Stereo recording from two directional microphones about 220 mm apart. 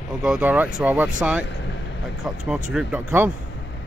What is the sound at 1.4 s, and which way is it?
Speech, 55° left (ahead or behind).